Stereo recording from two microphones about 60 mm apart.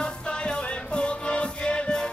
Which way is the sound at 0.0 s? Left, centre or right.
Centre.